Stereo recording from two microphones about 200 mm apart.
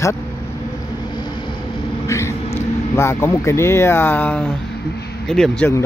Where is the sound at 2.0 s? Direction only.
15° left (ahead or behind).